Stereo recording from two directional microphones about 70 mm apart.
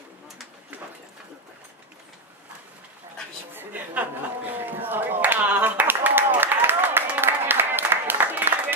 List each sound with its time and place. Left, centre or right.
3.5 s a woman's voice: right
4.6 s clapping: right